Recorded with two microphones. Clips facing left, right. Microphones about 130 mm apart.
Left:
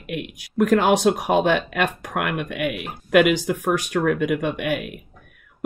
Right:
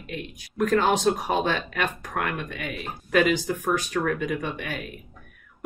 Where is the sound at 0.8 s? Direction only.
75° left (ahead or behind).